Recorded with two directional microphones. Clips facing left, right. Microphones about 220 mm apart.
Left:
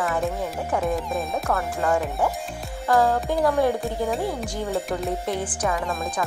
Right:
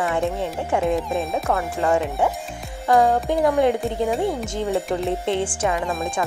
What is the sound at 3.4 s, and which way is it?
Music, 20° right (ahead or behind).